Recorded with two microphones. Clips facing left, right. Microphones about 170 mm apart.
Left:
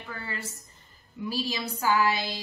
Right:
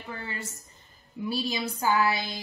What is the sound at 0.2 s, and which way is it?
A woman's voice, 20° right (ahead or behind).